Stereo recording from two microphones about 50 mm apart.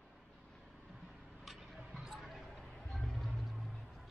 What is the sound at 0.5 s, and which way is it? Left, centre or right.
Vehicle, centre.